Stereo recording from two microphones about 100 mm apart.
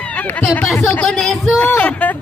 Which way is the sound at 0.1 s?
15° left (ahead or behind).